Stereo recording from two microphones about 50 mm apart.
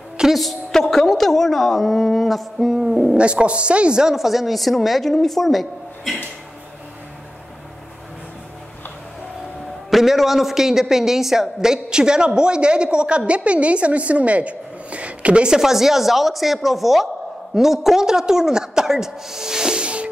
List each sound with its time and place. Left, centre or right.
0.2 s a woman's voice: centre
2.6 s a man's voice: centre
3.2 s a woman's voice: right
4.1 s a woman's voice: centre
9.8 s a man's voice: centre; by 20.1 s right